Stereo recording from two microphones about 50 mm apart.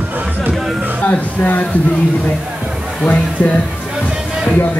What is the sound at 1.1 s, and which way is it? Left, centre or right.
Speech, left.